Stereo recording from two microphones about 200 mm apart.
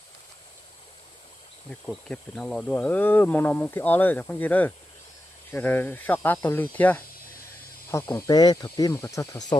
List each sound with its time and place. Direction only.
1.7 s speech: 5° left (ahead or behind)